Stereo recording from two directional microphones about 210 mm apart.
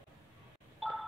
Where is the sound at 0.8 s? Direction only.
Centre (ahead or behind).